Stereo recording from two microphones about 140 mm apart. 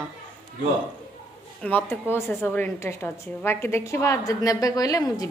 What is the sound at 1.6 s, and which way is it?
A woman's voice, 15° left (ahead or behind).